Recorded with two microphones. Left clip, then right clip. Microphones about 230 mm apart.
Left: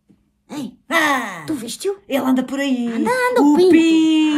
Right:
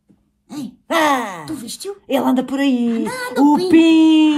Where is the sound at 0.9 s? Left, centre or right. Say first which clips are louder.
Right 1 dB; centre.